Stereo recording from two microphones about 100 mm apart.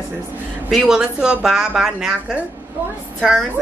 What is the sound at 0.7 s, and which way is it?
A woman's voice, centre (ahead or behind).